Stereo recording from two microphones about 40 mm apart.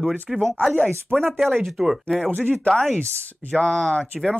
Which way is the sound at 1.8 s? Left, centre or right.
Centre.